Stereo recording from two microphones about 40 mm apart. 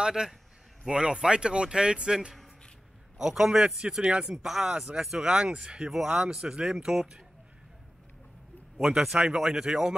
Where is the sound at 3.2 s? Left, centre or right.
Centre.